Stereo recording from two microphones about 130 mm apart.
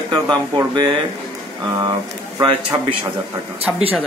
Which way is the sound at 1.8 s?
30° right (ahead or behind).